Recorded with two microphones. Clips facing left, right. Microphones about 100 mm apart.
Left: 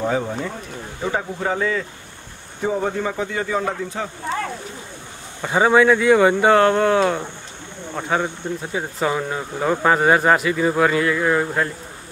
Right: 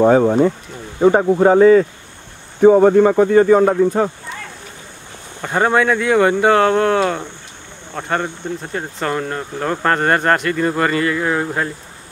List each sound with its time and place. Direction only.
0.0 s speech: 55° right (ahead or behind)
2.6 s speech: 55° right (ahead or behind)
5.4 s speech: centre (ahead or behind)